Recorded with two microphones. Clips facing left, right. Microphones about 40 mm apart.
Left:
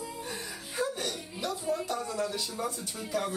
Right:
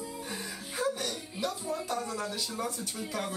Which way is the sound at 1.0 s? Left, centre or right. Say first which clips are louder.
Right 1 dB; centre.